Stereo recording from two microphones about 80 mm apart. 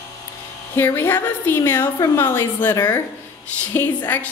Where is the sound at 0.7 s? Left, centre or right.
Left.